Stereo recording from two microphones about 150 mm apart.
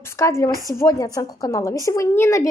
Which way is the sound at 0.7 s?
20° left (ahead or behind).